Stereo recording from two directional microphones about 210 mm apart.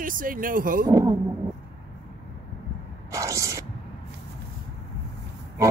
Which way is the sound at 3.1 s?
15° right (ahead or behind).